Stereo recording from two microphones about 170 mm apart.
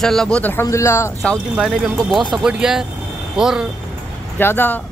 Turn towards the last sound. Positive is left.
turn(degrees=10)  # may be behind; listen again after turning